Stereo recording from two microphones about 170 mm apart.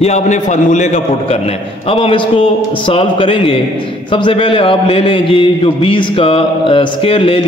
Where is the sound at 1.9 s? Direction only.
30° left (ahead or behind).